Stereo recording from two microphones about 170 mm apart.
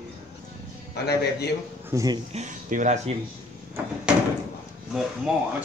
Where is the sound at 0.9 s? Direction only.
70° left (ahead or behind).